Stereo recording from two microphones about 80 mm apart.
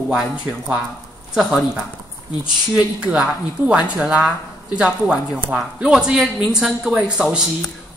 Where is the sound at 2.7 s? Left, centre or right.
Centre.